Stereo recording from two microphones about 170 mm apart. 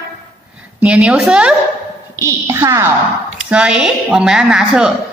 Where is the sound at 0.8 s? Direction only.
5° right (ahead or behind).